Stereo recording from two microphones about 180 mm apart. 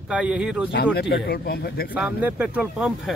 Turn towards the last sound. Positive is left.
turn(degrees=-5)  # may be behind; listen again after turning